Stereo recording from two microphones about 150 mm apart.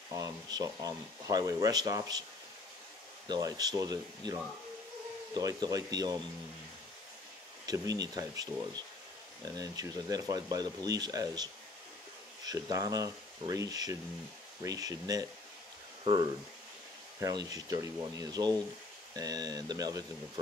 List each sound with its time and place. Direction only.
0.1 s speech: 25° right (ahead or behind)
3.3 s speech: 25° right (ahead or behind)
7.6 s speech: 25° right (ahead or behind)
12.4 s speech: 25° right (ahead or behind)